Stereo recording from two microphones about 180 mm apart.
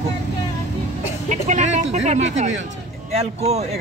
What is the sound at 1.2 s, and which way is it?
Speech, 40° right (ahead or behind).